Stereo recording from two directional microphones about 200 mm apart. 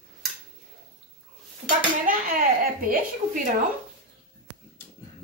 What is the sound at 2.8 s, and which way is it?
Speech, 45° right (ahead or behind).